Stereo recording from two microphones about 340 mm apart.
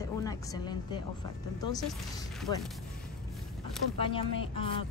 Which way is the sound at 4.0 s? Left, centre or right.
Centre.